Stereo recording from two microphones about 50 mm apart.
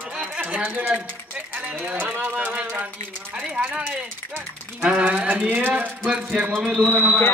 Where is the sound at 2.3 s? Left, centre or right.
Right.